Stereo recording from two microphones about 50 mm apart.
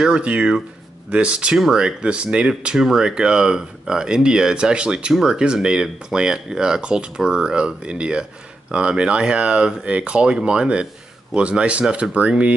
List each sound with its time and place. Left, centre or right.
0.0 s speech: right